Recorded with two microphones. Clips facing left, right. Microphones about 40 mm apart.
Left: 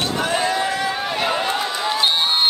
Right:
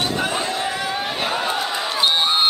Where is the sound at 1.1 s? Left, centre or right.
Centre.